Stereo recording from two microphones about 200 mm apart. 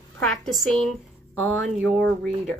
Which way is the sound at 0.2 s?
Centre (ahead or behind).